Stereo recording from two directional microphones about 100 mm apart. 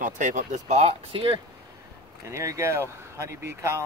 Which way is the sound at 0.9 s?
65° right (ahead or behind).